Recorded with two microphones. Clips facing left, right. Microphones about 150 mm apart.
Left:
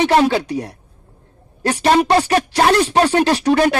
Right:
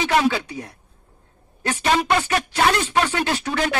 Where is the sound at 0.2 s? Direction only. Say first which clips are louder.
Left 5 dB; 55° left (ahead or behind).